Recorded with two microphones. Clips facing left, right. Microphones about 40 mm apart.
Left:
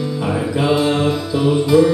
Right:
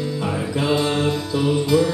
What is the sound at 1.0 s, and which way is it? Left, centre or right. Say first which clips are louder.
Music: left 4 dB; centre.